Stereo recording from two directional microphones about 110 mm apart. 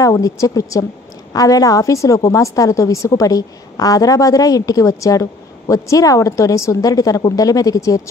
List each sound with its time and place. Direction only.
0.0 s a woman's voice: 30° left (ahead or behind)